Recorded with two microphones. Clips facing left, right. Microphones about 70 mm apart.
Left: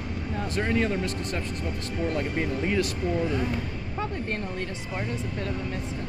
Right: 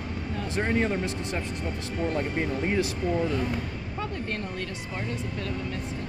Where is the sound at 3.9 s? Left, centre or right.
Left.